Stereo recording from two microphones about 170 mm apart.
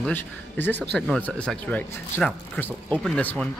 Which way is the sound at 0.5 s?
90° right.